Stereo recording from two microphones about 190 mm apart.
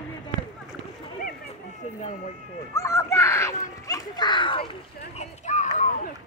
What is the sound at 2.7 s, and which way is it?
Children playing, 15° left (ahead or behind).